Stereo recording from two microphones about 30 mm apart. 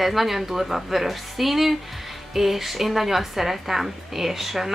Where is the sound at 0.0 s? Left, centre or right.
Centre.